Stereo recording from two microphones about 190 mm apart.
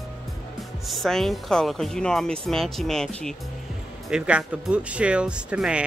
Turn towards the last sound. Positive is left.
turn(degrees=-5)  # may be behind; listen again after turning